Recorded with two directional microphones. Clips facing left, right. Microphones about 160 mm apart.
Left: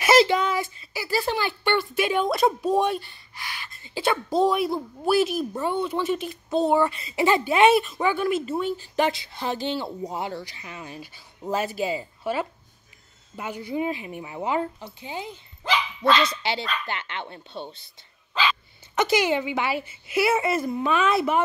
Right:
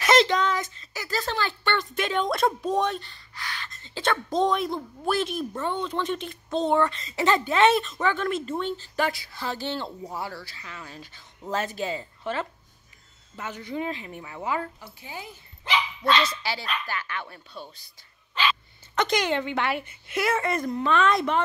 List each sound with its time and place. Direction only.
0.0 s speech: 5° left (ahead or behind); by 17.8 s 25° left (ahead or behind)
18.9 s speech: 5° left (ahead or behind)